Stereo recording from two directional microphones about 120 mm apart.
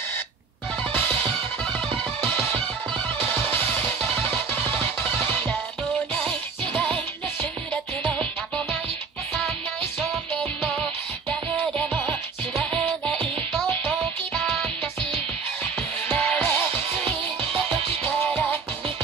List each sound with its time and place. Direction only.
4.3 s music: 15° left (ahead or behind)
8.0 s music: 15° left (ahead or behind)
10.6 s music: 10° left (ahead or behind)
16.2 s music: 20° left (ahead or behind)